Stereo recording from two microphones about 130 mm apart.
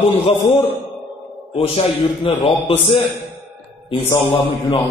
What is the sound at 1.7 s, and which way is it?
A man's voice, 45° left (ahead or behind).